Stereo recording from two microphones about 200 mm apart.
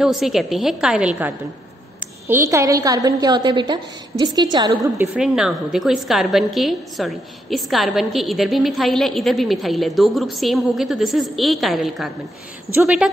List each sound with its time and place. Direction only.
0.0 s a woman's voice: centre (ahead or behind); by 5.0 s 20° right (ahead or behind)
5.1 s a woman's voice: 5° right (ahead or behind)